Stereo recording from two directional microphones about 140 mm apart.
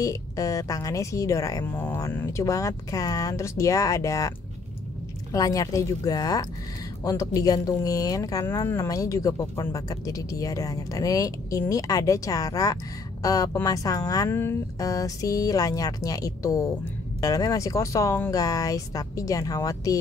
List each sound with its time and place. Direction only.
0.0 s speech: 25° left (ahead or behind)
5.3 s speech: 25° left (ahead or behind)